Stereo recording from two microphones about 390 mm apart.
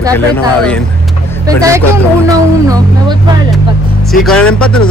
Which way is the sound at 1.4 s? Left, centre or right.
Centre.